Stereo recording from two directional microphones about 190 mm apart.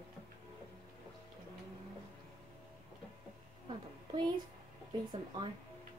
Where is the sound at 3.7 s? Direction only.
25° right (ahead or behind).